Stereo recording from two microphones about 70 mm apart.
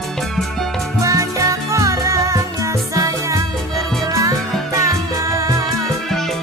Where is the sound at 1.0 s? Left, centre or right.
Right.